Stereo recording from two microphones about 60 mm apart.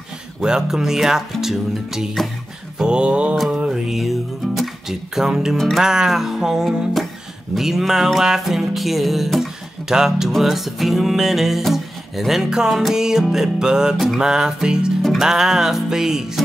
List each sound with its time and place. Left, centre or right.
0.4 s music: centre
2.8 s music: centre
3.4 s speech: centre
5.8 s music: centre